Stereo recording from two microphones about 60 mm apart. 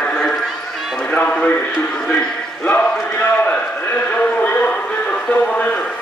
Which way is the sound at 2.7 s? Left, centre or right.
Left.